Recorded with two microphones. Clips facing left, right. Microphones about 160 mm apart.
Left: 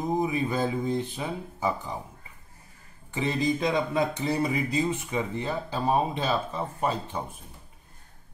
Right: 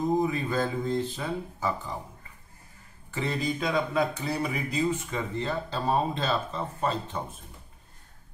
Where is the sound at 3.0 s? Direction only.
20° left (ahead or behind).